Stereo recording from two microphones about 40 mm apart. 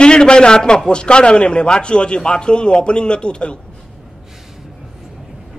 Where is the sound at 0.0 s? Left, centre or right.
Left.